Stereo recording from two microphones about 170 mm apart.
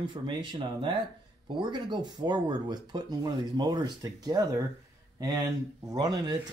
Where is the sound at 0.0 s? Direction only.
25° right (ahead or behind).